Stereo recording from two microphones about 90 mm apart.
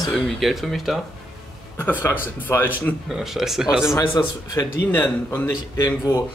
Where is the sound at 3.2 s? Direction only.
5° right (ahead or behind).